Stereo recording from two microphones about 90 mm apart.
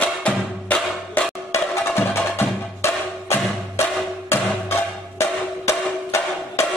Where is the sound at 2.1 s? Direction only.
30° left (ahead or behind).